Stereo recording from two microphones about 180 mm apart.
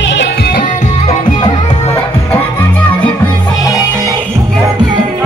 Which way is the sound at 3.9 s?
20° right (ahead or behind).